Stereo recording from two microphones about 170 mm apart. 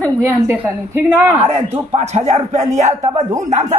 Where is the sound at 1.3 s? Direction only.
30° right (ahead or behind).